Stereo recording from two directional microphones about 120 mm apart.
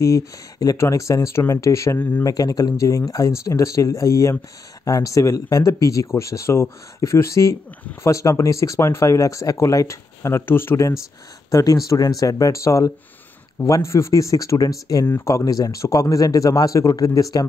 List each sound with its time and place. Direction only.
0.6 s speech: 30° left (ahead or behind)
2.2 s speech: 30° left (ahead or behind)
7.8 s speech: 15° left (ahead or behind)
8.1 s speech: 25° left (ahead or behind)